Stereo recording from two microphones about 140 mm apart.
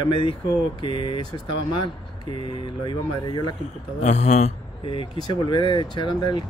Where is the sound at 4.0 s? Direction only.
55° left (ahead or behind).